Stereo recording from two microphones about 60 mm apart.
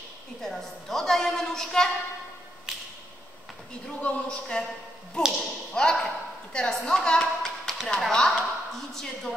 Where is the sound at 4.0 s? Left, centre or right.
Centre.